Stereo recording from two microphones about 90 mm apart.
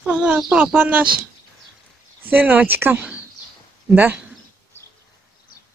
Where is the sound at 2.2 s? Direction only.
15° right (ahead or behind).